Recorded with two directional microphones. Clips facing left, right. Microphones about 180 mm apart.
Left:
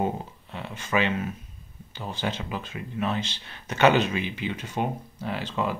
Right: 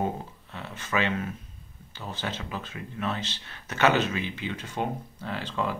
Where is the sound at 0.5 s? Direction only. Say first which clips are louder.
Left 4 dB; 15° left (ahead or behind).